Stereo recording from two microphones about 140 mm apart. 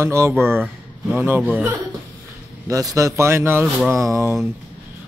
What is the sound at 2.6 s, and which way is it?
Speech, 25° right (ahead or behind).